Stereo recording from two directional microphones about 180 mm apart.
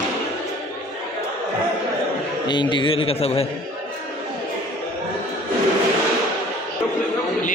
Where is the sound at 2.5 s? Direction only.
25° left (ahead or behind).